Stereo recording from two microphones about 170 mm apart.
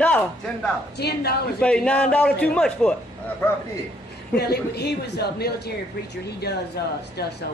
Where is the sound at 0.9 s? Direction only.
70° left (ahead or behind).